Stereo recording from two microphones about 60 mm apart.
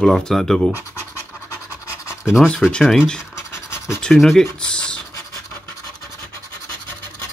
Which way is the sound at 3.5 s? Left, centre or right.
Left.